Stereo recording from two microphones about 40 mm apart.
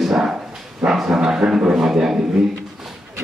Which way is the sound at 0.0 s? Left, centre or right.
Centre.